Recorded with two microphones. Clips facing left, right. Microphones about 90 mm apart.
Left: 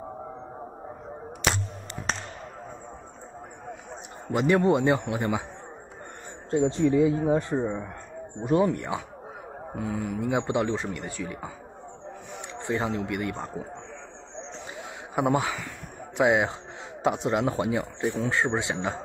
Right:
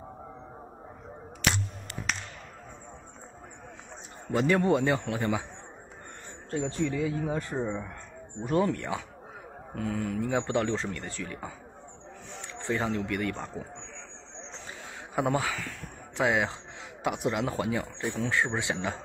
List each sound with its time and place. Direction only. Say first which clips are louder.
2.1 s basketball bounce: left 3 dB; 35° left (ahead or behind)
4.3 s a man's voice: left 3 dB; 25° left (ahead or behind)
6.5 s a man's voice: left 8 dB; 25° left (ahead or behind)
7.6 s a man's voice: left 3 dB; 10° left (ahead or behind)
15.1 s a man's voice: left 3 dB; 20° left (ahead or behind)